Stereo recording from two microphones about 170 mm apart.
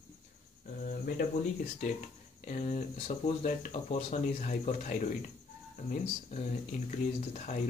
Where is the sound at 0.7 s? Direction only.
55° left (ahead or behind).